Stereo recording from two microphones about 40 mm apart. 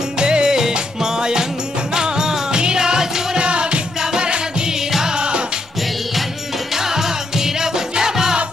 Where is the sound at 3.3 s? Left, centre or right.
Right.